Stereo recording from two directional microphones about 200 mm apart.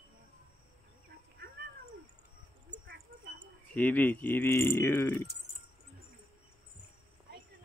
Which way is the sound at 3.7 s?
10° left (ahead or behind).